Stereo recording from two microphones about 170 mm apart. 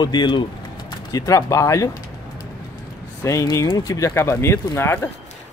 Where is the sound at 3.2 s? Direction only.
20° left (ahead or behind).